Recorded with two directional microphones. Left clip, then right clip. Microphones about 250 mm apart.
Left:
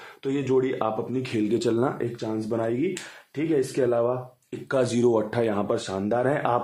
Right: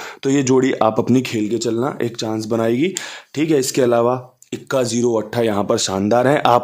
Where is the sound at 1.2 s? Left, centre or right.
Right.